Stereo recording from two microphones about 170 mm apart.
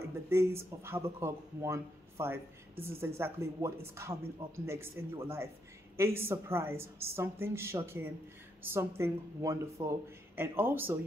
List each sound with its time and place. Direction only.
0.3 s speech: 15° right (ahead or behind)